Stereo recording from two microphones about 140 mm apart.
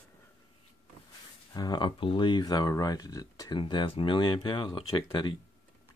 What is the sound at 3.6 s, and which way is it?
Speech, 35° left (ahead or behind).